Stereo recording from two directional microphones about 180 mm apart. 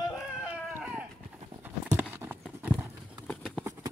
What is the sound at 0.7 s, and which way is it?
Run, 5° right (ahead or behind).